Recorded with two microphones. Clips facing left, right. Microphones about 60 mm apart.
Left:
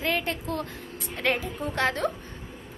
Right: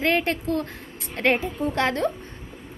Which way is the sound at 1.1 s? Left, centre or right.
Right.